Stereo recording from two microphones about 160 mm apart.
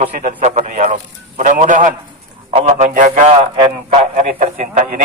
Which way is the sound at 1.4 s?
55° right (ahead or behind).